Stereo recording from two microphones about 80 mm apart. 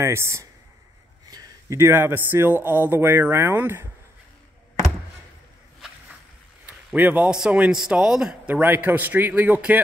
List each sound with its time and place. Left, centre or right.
0.0 s speech: right
1.3 s a sound: right
1.8 s speech: right
6.6 s a sound: right
7.2 s speech: centre
8.5 s speech: right